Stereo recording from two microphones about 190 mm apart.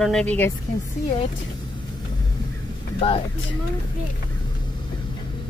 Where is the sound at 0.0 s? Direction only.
5° left (ahead or behind).